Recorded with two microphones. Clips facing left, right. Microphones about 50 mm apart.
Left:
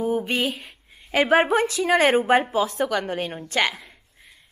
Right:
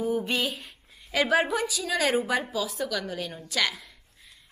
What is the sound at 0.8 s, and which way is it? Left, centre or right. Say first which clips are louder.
A woman's voice: left 5 dB; left.